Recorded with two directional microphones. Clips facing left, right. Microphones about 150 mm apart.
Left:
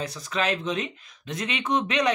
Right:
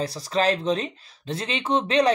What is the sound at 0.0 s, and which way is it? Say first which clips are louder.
Speech: right 5 dB; 35° right (ahead or behind).